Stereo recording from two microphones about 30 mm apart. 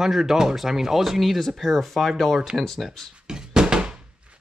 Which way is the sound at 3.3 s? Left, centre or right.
Right.